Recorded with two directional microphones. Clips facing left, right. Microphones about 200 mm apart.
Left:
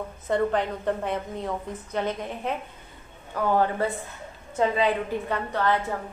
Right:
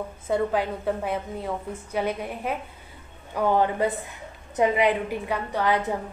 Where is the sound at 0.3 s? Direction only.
5° right (ahead or behind).